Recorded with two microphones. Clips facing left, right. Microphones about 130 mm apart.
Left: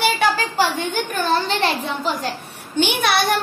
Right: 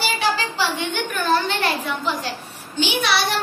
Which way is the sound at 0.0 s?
50° left (ahead or behind).